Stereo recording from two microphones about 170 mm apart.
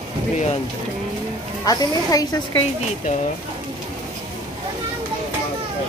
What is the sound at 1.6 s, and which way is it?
Speech, 25° left (ahead or behind).